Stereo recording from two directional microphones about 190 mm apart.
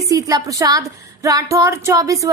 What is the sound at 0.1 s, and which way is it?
A woman's voice, 15° right (ahead or behind).